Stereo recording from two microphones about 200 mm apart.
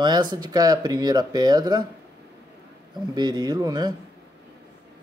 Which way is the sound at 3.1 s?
20° right (ahead or behind).